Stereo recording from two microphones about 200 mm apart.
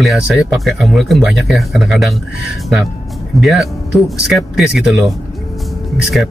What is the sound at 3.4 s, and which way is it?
Speech, centre (ahead or behind).